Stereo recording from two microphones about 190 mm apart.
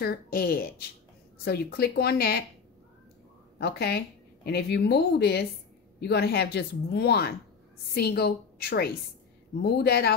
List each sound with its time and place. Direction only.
0.0 s speech: 55° left (ahead or behind)
3.5 s speech: 60° left (ahead or behind)